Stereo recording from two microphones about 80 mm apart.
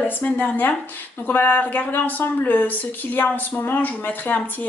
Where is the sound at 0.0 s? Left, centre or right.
Centre.